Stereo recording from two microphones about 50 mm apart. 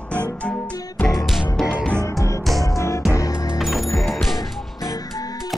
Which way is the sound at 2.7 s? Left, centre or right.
Left.